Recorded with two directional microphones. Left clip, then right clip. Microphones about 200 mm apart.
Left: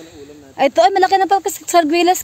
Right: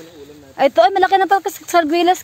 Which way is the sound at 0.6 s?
15° left (ahead or behind).